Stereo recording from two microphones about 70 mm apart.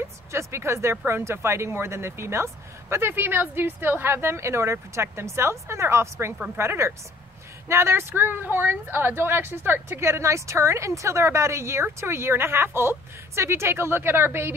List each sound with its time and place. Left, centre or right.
0.3 s speech: right